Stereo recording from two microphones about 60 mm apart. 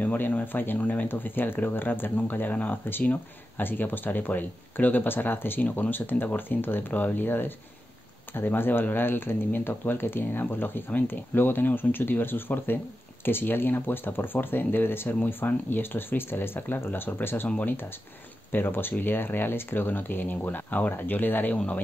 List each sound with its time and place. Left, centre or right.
0.0 s speech: left
18.5 s speech: left